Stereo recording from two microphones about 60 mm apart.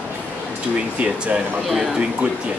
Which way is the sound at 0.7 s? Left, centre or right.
Centre.